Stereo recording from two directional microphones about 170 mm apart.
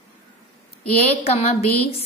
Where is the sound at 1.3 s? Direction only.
35° left (ahead or behind).